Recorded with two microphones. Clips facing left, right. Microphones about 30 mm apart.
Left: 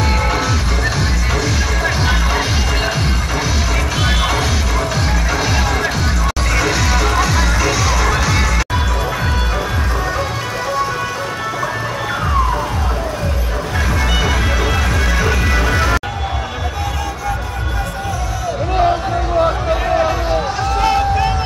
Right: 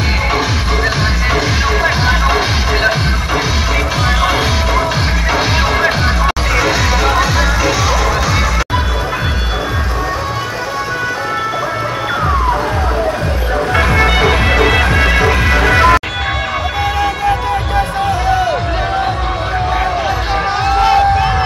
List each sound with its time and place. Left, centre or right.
1.3 s music: right
4.2 s music: right
6.5 s music: centre
13.7 s music: right
20.8 s a sound: right